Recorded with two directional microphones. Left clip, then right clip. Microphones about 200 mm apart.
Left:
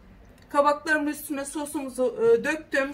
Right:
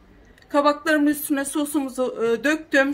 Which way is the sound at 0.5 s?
55° right (ahead or behind).